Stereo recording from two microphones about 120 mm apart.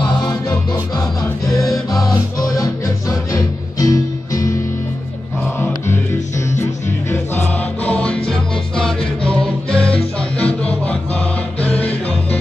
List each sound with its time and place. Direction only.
2.0 s music: 30° left (ahead or behind)
7.1 s music: 15° left (ahead or behind)